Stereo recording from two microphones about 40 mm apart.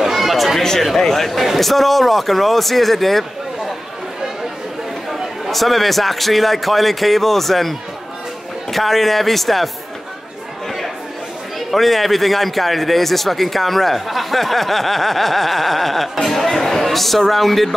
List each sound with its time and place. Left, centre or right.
0.0 s a sound: centre
0.7 s a man's voice: centre
5.1 s speech: centre
11.7 s speech: centre